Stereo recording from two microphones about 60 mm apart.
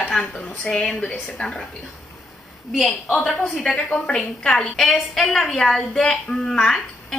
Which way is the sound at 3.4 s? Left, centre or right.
Centre.